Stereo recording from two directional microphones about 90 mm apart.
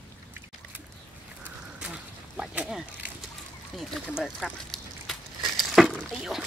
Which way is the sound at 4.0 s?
5° left (ahead or behind).